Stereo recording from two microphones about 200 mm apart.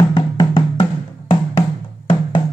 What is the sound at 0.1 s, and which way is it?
Music, 25° left (ahead or behind).